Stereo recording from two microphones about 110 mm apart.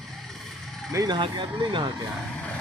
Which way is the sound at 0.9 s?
35° right (ahead or behind).